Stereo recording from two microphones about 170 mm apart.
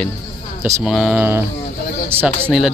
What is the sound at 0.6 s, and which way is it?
Speech, 15° right (ahead or behind).